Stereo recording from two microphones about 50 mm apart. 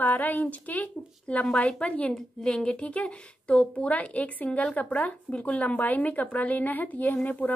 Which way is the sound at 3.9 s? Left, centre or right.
Left.